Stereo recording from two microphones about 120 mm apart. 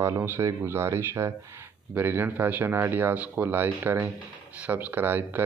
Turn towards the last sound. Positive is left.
turn(degrees=-15)  # may be behind; listen again after turning